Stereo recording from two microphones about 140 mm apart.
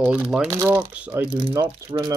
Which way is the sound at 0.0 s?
10° right (ahead or behind).